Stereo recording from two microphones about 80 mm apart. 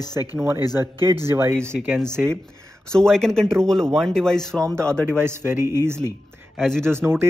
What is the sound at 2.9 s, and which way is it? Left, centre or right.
Speech, centre.